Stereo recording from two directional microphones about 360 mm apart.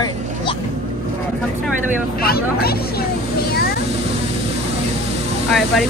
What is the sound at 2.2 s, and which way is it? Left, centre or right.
Speech, left.